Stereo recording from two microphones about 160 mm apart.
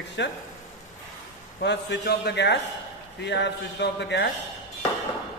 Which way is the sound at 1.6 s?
90° left.